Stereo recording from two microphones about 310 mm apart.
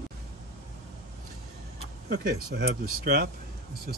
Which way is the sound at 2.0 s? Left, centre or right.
Right.